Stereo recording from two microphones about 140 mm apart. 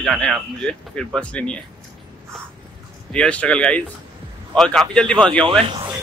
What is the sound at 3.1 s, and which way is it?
A man's voice, 5° left (ahead or behind).